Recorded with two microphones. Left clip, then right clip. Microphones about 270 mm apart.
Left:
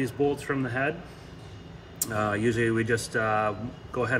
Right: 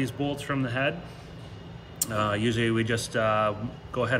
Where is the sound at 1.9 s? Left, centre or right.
Centre.